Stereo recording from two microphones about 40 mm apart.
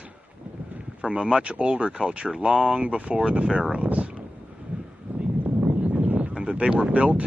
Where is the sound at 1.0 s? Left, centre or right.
Right.